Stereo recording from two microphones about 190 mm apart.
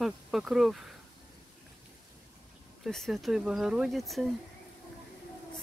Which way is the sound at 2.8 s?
Centre (ahead or behind).